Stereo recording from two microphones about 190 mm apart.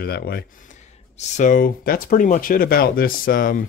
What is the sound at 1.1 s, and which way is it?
Speech, 40° left (ahead or behind).